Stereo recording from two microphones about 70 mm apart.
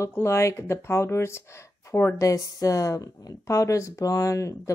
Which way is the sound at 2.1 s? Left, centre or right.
Left.